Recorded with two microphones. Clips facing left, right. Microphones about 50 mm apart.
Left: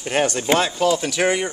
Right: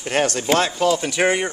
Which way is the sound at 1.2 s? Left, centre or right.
Centre.